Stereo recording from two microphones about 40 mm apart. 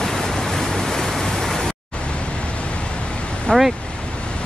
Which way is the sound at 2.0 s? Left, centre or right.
Left.